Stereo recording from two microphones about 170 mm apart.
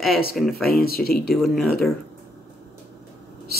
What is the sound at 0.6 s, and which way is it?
Speech, 60° left (ahead or behind).